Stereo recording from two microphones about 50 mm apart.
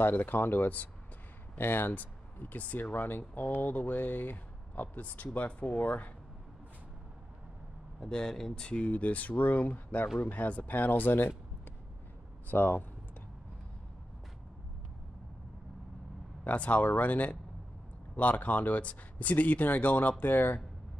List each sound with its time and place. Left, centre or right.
0.0 s speech: left
1.6 s speech: left
8.0 s speech: centre
8.6 s speech: left
12.4 s speech: left
16.4 s speech: left